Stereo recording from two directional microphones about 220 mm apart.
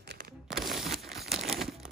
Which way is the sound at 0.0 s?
50° right (ahead or behind).